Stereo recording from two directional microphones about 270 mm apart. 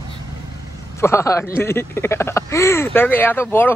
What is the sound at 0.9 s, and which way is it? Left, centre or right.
Speech, centre.